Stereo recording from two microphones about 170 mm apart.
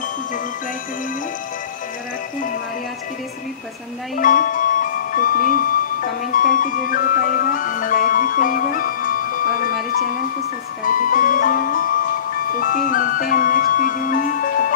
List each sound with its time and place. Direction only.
4.2 s speech: 50° left (ahead or behind)
10.9 s music: 50° left (ahead or behind)
12.5 s speech: 55° left (ahead or behind)